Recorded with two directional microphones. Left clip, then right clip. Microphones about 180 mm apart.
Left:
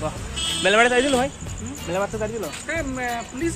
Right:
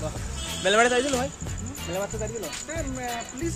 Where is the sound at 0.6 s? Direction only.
10° left (ahead or behind).